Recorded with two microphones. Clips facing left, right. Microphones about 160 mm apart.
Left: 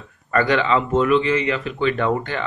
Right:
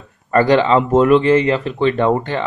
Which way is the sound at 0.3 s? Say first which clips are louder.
Right 6 dB; 35° right (ahead or behind).